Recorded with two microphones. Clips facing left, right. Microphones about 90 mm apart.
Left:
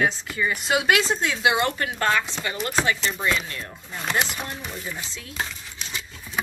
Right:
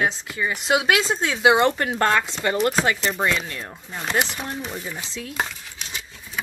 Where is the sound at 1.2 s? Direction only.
30° right (ahead or behind).